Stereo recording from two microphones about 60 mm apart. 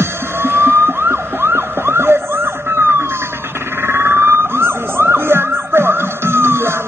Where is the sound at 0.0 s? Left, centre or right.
Right.